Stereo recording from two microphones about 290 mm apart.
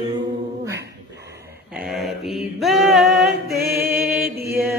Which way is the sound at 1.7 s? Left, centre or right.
Centre.